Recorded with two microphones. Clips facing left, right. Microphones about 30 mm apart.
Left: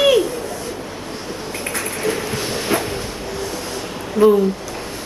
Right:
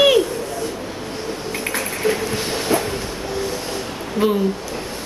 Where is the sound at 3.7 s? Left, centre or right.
Centre.